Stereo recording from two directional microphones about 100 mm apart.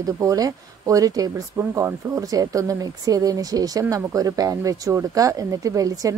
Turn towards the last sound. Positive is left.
turn(degrees=-35)  # may be behind; listen again after turning